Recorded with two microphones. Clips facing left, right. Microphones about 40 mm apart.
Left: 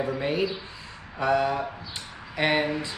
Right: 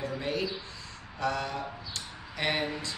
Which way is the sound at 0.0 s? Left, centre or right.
Left.